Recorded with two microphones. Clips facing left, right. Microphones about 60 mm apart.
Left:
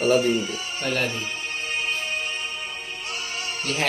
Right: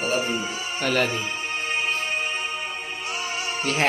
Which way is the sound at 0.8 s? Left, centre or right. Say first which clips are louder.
Right 3 dB; right.